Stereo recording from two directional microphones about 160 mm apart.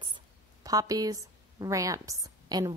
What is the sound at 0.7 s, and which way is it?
A woman's voice, 20° right (ahead or behind).